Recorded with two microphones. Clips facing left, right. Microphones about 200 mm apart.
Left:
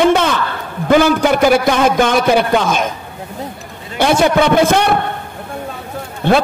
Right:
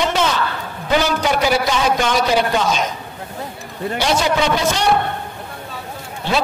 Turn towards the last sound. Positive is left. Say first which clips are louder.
# left 8 dB
turn(degrees=55)  # may be behind; listen again after turning